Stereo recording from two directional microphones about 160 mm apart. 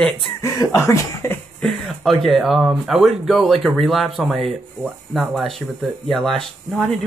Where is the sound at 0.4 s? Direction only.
20° left (ahead or behind).